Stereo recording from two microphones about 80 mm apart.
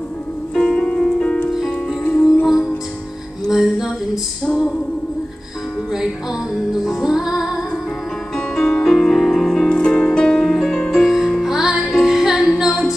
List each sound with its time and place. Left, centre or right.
0.6 s music: centre
2.2 s music: centre
6.7 s music: centre
8.4 s music: centre